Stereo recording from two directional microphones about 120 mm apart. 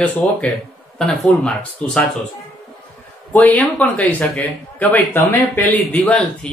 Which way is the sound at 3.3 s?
15° left (ahead or behind).